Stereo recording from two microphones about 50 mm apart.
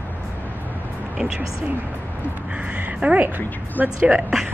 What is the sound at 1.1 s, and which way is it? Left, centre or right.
Speech, centre.